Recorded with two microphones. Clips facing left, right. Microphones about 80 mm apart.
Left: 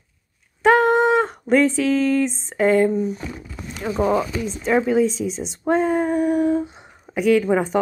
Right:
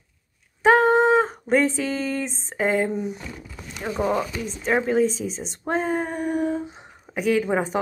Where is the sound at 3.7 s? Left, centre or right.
Centre.